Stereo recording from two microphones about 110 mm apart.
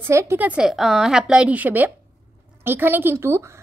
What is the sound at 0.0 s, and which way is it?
Speech, 25° right (ahead or behind).